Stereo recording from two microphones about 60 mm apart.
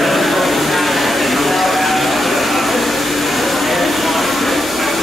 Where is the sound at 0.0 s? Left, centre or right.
Centre.